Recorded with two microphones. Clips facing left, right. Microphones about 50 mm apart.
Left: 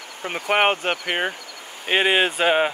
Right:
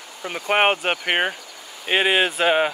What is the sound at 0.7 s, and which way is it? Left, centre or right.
Speech, centre.